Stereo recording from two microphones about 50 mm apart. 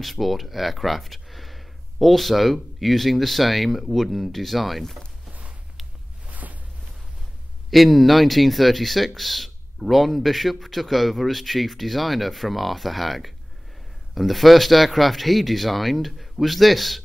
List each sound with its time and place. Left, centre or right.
0.0 s speech: centre
6.2 s boat: right
7.7 s speech: centre